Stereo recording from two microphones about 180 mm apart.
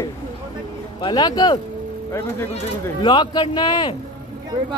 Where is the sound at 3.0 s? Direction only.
25° left (ahead or behind).